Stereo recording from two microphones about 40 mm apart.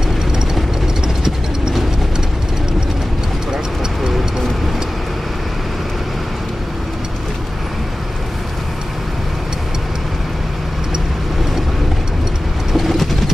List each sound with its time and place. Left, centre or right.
1.0 s mechanisms: centre
12.7 s vehicle: centre